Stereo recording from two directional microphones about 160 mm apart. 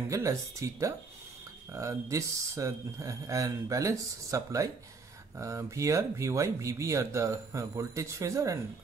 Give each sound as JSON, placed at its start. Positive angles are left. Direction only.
{"t": 0.1, "sound": "speech", "side_deg": -20}